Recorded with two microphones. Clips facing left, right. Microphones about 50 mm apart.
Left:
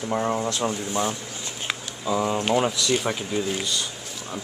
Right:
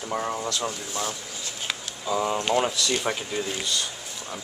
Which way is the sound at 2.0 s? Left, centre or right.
Centre.